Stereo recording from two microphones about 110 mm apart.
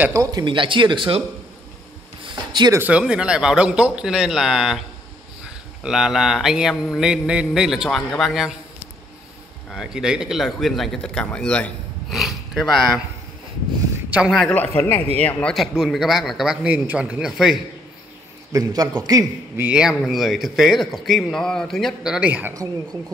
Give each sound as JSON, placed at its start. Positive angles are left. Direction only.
{"t": 0.1, "sound": "speech", "side_deg": -35}
{"t": 2.2, "sound": "a sound", "side_deg": -45}
{"t": 2.9, "sound": "a man's voice", "side_deg": -10}
{"t": 9.7, "sound": "a man's voice", "side_deg": -5}
{"t": 12.1, "sound": "speech", "side_deg": 0}
{"t": 14.1, "sound": "a man's voice", "side_deg": -10}
{"t": 14.5, "sound": "a man's voice", "side_deg": 15}
{"t": 15.5, "sound": "a man's voice", "side_deg": -5}
{"t": 16.6, "sound": "a man's voice", "side_deg": -15}
{"t": 18.5, "sound": "a man's voice", "side_deg": -35}
{"t": 19.5, "sound": "speech", "side_deg": -20}
{"t": 19.8, "sound": "a man's voice", "side_deg": -5}
{"t": 22.5, "sound": "a man's voice", "side_deg": -30}